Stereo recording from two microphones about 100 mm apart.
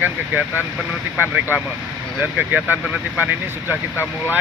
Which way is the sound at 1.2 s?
20° right (ahead or behind).